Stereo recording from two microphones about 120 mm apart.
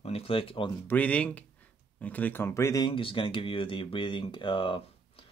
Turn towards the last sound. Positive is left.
turn(degrees=40)  # may be behind; listen again after turning